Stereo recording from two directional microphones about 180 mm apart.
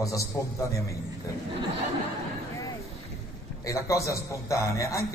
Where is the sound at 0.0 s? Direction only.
15° left (ahead or behind).